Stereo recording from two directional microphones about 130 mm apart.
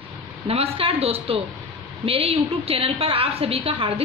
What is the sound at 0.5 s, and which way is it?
A woman's voice, 45° right (ahead or behind).